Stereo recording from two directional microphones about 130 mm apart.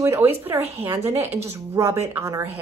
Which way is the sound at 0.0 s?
20° right (ahead or behind).